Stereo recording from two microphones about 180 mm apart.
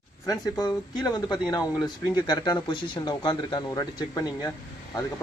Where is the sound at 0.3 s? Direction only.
20° left (ahead or behind).